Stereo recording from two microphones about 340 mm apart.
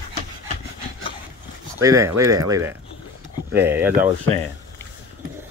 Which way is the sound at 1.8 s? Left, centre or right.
Centre.